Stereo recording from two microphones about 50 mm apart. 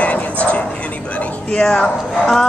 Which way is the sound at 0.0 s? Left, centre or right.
Left.